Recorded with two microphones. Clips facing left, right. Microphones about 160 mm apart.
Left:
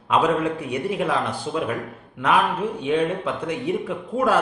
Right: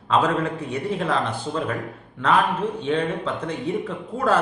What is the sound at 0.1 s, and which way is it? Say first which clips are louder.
A man's voice: left 1 dB; 15° left (ahead or behind).